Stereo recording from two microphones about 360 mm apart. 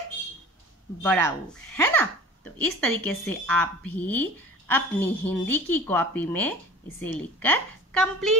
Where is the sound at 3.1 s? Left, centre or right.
Centre.